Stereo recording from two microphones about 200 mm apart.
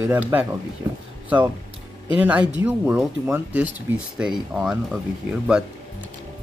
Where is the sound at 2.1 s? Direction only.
5° right (ahead or behind).